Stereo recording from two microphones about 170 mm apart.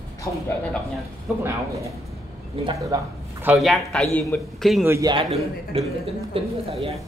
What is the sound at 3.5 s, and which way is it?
Speech, centre (ahead or behind).